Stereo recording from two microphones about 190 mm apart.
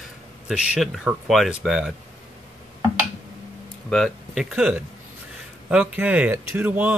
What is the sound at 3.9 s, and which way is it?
Speech, centre (ahead or behind).